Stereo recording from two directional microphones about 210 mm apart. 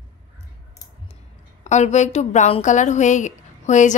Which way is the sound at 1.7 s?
35° left (ahead or behind).